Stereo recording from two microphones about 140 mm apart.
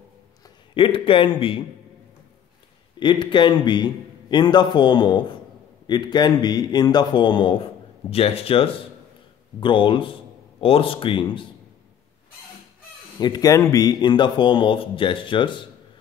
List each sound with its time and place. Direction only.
0.7 s speech: 40° left (ahead or behind)
3.0 s a man's voice: 35° left (ahead or behind)
13.2 s speech: 30° left (ahead or behind)